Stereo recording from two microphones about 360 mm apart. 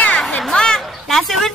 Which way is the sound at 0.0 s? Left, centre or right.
Centre.